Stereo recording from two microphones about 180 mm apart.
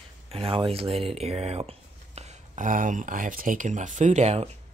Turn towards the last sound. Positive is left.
turn(degrees=-40)  # may be behind; listen again after turning